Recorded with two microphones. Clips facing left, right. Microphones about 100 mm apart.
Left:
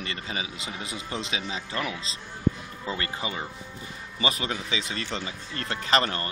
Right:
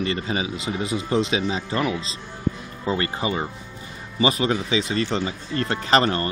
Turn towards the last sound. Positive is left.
turn(degrees=-30)  # may be behind; listen again after turning